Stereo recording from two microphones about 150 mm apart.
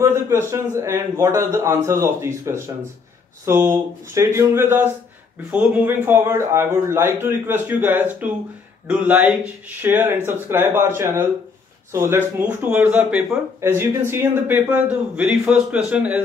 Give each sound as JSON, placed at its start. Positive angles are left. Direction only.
{"t": 0.0, "sound": "a man's voice", "side_deg": -15}